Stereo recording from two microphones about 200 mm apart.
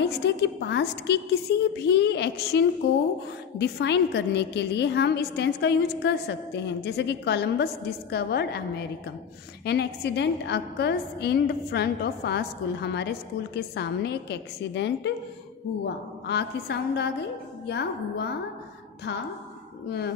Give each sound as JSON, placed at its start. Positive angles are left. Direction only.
{"t": 0.0, "sound": "a woman's voice", "side_deg": 60}
{"t": 9.7, "sound": "a woman's voice", "side_deg": 55}
{"t": 16.3, "sound": "a woman's voice", "side_deg": 55}